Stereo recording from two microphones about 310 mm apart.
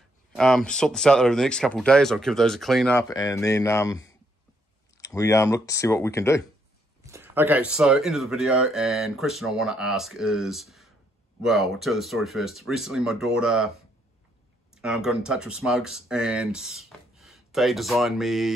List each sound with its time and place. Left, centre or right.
0.4 s speech: centre
7.1 s speech: centre
14.7 s speech: centre